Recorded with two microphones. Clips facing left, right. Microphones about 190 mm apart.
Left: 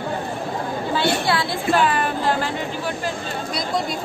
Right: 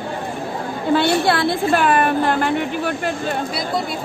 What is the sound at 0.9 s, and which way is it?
A woman's voice, 55° right (ahead or behind).